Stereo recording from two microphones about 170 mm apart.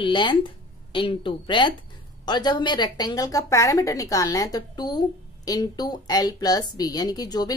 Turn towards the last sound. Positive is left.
turn(degrees=25)  # may be behind; listen again after turning